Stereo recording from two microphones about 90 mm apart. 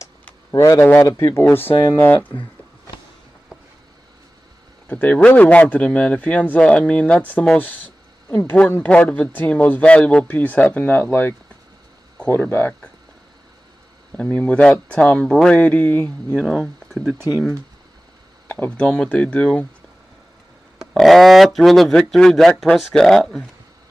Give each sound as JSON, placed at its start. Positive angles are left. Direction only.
{"t": 0.5, "sound": "speech", "side_deg": 35}
{"t": 4.8, "sound": "speech", "side_deg": 20}
{"t": 14.1, "sound": "speech", "side_deg": 15}
{"t": 16.4, "sound": "speech", "side_deg": 0}
{"t": 18.5, "sound": "speech", "side_deg": 15}
{"t": 20.8, "sound": "speech", "side_deg": 0}